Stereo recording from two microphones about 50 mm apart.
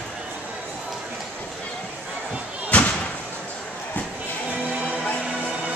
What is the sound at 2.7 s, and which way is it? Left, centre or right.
Slam, left.